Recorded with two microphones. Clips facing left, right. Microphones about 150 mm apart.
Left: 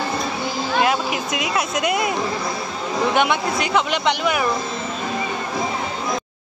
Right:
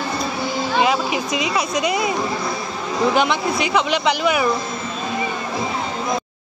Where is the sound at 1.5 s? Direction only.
5° left (ahead or behind).